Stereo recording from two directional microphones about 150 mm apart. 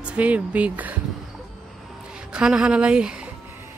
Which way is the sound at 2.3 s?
5° right (ahead or behind).